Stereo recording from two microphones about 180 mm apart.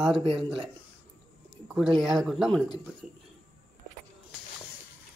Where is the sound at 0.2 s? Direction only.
30° right (ahead or behind).